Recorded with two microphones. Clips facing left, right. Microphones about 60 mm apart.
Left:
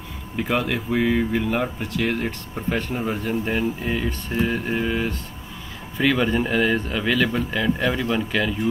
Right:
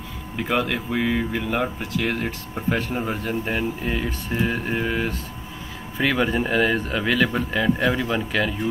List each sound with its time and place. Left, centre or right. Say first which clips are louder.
0.4 s speech: even; centre